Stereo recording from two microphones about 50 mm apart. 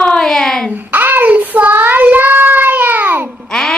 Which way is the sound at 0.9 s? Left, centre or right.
Right.